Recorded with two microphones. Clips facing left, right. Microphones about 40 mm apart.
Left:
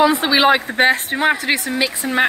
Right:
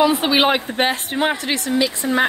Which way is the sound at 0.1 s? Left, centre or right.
Left.